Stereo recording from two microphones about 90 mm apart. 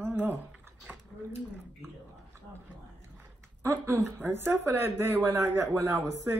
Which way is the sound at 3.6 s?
30° right (ahead or behind).